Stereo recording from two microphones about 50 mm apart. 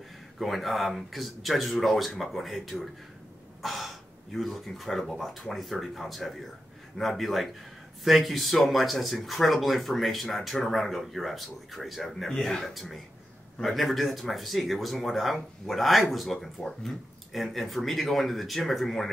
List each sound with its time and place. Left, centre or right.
0.4 s speech: centre